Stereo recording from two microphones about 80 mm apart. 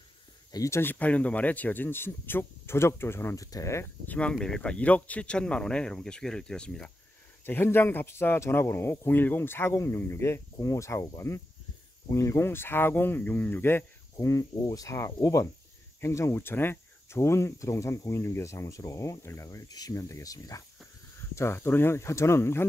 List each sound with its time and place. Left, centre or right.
0.7 s speech: left
0.9 s speech: centre; by 3.4 s left
3.4 s speech: left
4.0 s speech: left
4.3 s speech: centre
7.4 s speech: left
14.1 s speech: left
21.4 s speech: left